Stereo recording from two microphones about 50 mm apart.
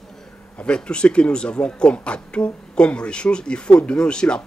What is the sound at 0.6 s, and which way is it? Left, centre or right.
Speech, centre.